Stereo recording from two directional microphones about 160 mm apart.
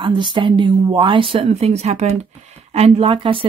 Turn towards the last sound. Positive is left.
turn(degrees=-35)  # may be behind; listen again after turning